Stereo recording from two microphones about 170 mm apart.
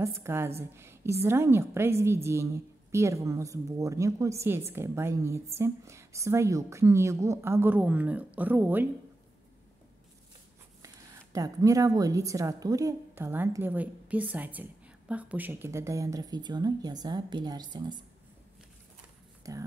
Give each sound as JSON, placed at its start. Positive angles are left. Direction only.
{"t": 0.0, "sound": "a woman's voice", "side_deg": -15}
{"t": 11.3, "sound": "a woman's voice", "side_deg": -20}
{"t": 19.4, "sound": "a woman's voice", "side_deg": -20}